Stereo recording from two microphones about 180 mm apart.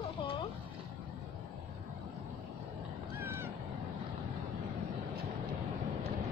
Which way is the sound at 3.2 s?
10° right (ahead or behind).